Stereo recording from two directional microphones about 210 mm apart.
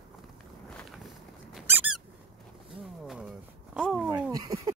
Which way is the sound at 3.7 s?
Centre (ahead or behind).